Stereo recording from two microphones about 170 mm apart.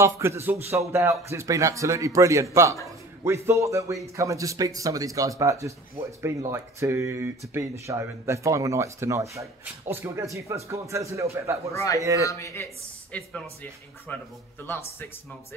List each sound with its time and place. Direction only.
0.0 s speech: 15° right (ahead or behind)
11.7 s a man's voice: 20° left (ahead or behind)